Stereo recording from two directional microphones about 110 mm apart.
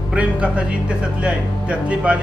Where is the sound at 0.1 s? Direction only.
10° right (ahead or behind).